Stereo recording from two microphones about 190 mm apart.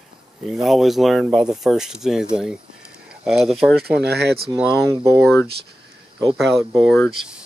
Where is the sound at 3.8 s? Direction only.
60° right (ahead or behind).